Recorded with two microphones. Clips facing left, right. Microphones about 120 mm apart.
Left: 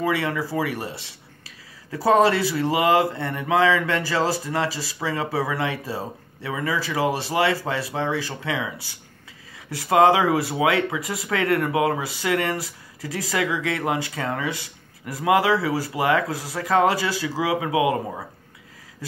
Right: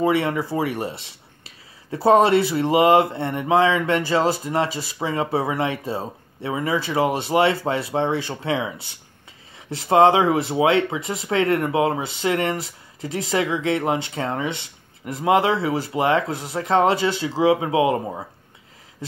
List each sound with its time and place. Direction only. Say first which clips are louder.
0.0 s speech: right 4 dB; 25° right (ahead or behind)